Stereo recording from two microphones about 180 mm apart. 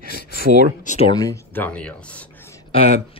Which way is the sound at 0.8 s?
40° left (ahead or behind).